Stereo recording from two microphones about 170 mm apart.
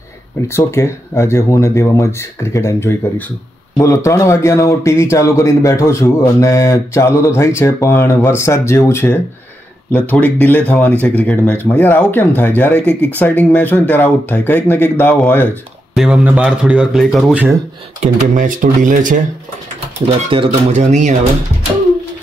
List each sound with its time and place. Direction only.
0.5 s a man's voice: 15° left (ahead or behind)
15.9 s a man's voice: 5° right (ahead or behind)
18.0 s speech: 50° right (ahead or behind)
20.2 s speech: 40° right (ahead or behind)